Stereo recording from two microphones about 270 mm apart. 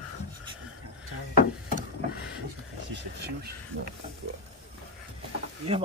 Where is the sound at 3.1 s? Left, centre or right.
Right.